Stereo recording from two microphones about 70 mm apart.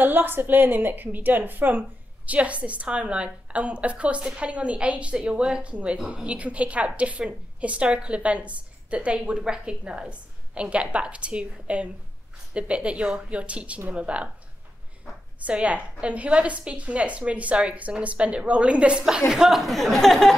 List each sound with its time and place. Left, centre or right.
0.0 s a woman's voice: right
15.4 s a woman's voice: centre